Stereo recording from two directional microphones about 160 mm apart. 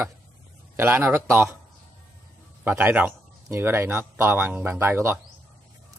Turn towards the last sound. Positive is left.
turn(degrees=-15)  # may be behind; listen again after turning